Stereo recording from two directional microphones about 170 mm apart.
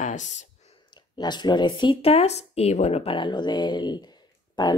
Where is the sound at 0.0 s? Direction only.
45° left (ahead or behind).